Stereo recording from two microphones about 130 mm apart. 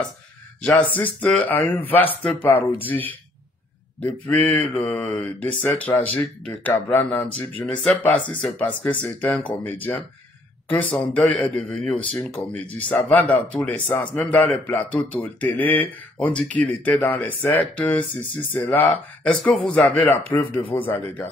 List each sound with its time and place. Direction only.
0.6 s speech: 5° left (ahead or behind)
2.0 s speech: 45° left (ahead or behind)
4.0 s speech: 10° left (ahead or behind)